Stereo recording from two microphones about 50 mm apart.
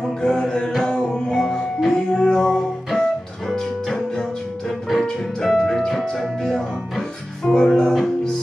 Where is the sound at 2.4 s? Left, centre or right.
Centre.